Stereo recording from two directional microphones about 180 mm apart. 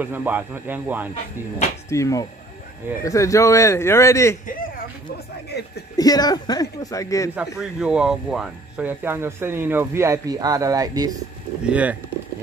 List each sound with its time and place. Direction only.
0.0 s speech: 10° right (ahead or behind)
1.9 s speech: 15° left (ahead or behind)
5.5 s speech: 70° left (ahead or behind)
5.9 s speech: 20° left (ahead or behind)
7.3 s speech: 5° right (ahead or behind)
11.6 s speech: 10° right (ahead or behind)